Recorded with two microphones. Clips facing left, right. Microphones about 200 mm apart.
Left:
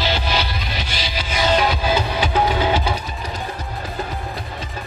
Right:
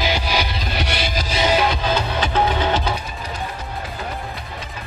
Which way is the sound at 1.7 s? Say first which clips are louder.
Left 1 dB; 10° left (ahead or behind).